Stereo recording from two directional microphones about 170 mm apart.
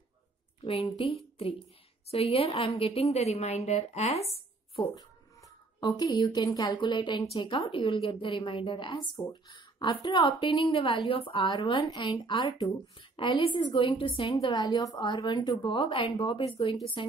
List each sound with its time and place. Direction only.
0.6 s a woman's voice: 35° left (ahead or behind)